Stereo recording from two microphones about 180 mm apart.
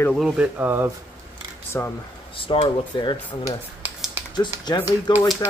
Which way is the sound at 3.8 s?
10° right (ahead or behind).